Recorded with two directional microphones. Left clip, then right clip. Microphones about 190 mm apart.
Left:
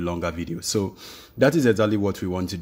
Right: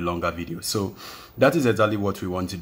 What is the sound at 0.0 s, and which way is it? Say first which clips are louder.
Speech: right 2 dB; 35° left (ahead or behind).